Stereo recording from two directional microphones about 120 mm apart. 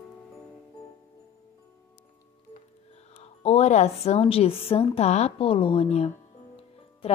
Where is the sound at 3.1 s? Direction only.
60° left (ahead or behind).